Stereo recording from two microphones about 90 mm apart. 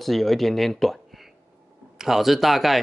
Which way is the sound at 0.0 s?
Centre (ahead or behind).